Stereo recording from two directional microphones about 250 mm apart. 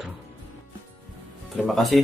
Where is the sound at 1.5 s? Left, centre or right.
Centre.